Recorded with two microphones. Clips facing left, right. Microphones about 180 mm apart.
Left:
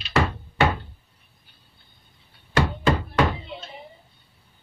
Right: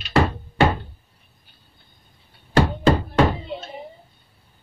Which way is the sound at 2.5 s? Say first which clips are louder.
Right 4 dB; 35° right (ahead or behind).